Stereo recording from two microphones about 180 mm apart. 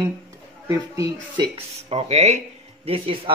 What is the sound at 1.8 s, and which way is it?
Speech, 35° right (ahead or behind).